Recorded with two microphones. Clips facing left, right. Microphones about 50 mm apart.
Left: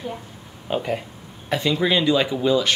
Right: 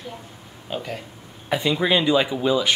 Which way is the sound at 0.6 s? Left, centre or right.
Centre.